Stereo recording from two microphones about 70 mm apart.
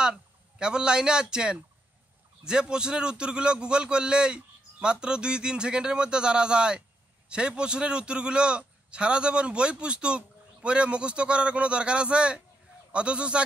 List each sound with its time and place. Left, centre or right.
0.0 s a man's voice: centre